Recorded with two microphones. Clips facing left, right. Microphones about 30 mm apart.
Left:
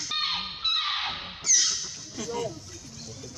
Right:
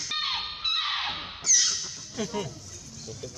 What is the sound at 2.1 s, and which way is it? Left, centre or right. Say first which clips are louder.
Speech: even; centre.